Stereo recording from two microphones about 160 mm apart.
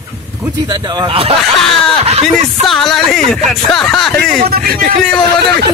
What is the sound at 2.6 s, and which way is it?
Speech, centre (ahead or behind).